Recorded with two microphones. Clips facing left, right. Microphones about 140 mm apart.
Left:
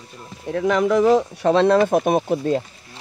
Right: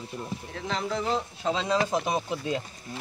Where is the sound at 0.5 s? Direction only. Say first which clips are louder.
Left 14 dB; 75° left (ahead or behind); by 2.6 s 50° left (ahead or behind).